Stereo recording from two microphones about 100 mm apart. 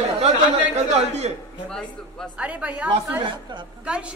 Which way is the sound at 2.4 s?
15° right (ahead or behind).